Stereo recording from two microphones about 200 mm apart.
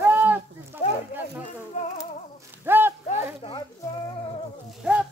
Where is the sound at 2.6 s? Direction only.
10° right (ahead or behind).